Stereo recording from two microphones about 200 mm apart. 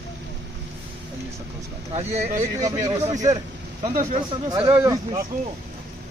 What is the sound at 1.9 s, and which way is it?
Speech, 35° right (ahead or behind).